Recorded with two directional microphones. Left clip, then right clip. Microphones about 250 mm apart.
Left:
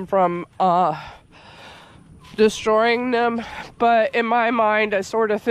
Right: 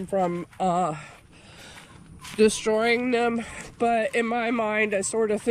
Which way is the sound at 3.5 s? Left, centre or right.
Left.